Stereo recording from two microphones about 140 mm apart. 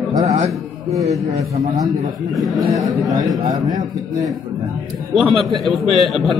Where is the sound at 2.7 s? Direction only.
25° right (ahead or behind).